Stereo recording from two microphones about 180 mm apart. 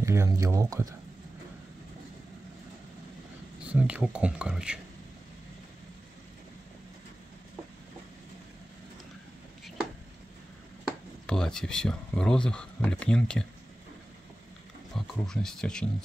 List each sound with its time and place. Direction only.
0.0 s speech: 15° right (ahead or behind)
3.7 s speech: 5° right (ahead or behind)
11.2 s speech: 5° left (ahead or behind)
15.0 s speech: 5° left (ahead or behind)